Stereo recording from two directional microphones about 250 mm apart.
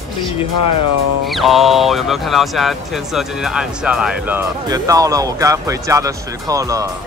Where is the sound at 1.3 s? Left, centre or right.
Centre.